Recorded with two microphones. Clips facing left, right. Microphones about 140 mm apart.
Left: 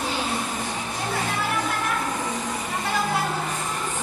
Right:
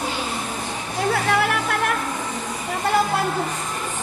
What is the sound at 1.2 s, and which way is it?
Music, 70° right (ahead or behind).